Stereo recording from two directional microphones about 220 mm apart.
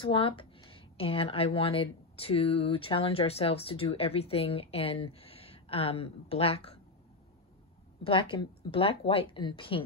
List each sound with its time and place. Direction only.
0.0 s speech: 25° left (ahead or behind)
8.0 s speech: 25° left (ahead or behind)